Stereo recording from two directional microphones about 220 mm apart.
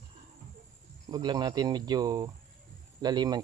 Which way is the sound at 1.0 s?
20° right (ahead or behind).